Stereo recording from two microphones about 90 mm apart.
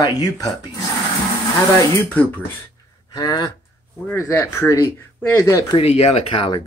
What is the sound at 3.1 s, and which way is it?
Speech, 45° left (ahead or behind).